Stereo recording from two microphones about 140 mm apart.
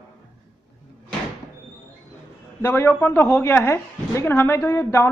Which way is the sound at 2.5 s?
15° left (ahead or behind).